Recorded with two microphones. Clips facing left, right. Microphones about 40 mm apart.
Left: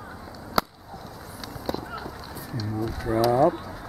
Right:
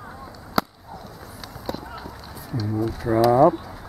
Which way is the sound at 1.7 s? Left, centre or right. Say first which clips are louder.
Left 1 dB; centre.